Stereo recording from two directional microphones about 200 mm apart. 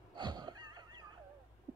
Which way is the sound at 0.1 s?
20° right (ahead or behind).